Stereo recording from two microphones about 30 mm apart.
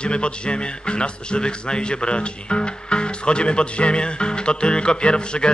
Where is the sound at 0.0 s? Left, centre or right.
Left.